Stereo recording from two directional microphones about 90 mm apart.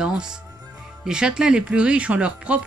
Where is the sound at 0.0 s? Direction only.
10° right (ahead or behind).